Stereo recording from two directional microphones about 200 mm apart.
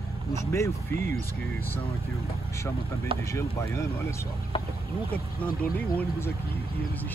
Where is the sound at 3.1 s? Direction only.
25° right (ahead or behind).